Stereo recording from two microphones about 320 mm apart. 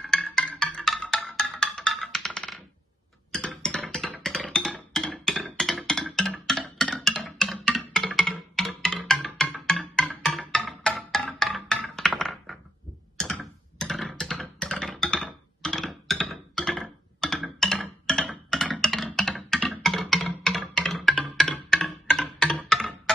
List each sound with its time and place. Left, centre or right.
0.0 s music: centre
13.2 s computer keyboard: centre